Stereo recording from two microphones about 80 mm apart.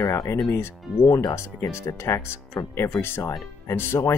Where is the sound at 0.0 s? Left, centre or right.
Left.